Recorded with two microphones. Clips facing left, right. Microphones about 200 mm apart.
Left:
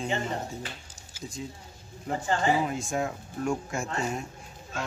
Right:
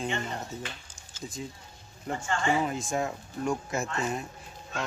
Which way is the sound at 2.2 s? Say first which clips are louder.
Left 3 dB; 35° left (ahead or behind).